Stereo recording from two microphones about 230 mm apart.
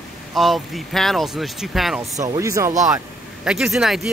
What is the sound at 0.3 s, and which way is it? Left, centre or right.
Speech, centre.